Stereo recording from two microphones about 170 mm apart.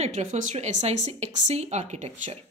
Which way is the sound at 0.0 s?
45° right (ahead or behind).